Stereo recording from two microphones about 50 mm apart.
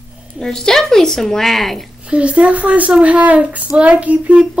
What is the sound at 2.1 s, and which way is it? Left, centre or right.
Speech, right.